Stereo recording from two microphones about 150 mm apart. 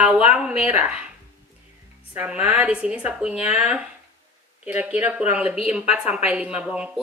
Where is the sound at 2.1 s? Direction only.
10° right (ahead or behind).